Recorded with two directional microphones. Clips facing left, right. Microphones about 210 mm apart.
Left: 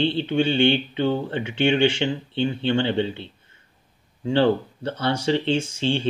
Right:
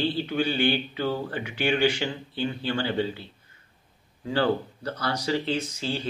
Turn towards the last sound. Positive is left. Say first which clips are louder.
# left 7 dB
turn(degrees=25)  # may be behind; listen again after turning